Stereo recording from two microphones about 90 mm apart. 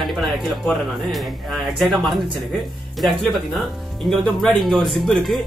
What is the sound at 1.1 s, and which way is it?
Speech, centre (ahead or behind).